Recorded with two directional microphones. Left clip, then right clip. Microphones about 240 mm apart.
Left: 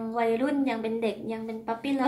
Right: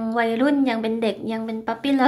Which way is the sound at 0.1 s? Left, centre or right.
Right.